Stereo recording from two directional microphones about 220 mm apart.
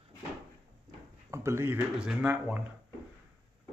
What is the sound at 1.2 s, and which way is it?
Speech, 10° right (ahead or behind).